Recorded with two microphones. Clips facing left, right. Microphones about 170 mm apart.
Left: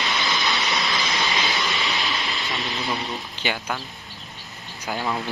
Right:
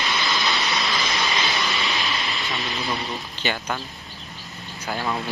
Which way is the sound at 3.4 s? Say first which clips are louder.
Right 1 dB; 10° left (ahead or behind).